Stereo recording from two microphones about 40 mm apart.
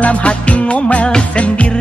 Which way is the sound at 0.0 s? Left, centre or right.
Left.